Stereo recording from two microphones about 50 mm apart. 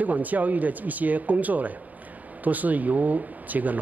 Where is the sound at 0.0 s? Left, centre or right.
Right.